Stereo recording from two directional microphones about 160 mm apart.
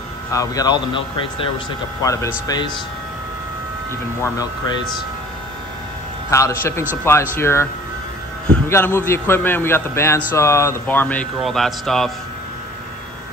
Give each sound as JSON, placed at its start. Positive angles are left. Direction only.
{"t": 0.3, "sound": "a man's voice", "side_deg": 20}
{"t": 4.2, "sound": "a man's voice", "side_deg": 20}
{"t": 6.3, "sound": "a man's voice", "side_deg": 20}
{"t": 8.6, "sound": "a man's voice", "side_deg": 15}